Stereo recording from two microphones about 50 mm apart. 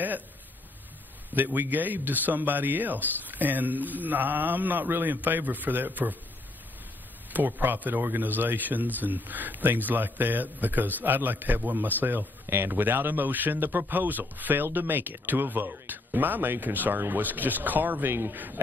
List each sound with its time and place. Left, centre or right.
1.3 s speech: right
7.3 s speech: right
18.1 s speech: right